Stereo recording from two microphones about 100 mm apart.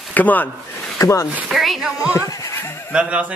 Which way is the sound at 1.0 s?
30° left (ahead or behind).